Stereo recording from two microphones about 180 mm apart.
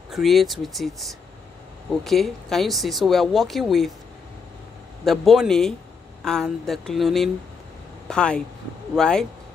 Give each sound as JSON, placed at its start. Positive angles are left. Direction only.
{"t": 0.1, "sound": "speech", "side_deg": 0}
{"t": 5.0, "sound": "speech", "side_deg": 0}